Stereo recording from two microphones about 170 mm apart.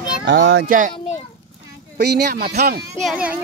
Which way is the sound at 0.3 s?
80° right.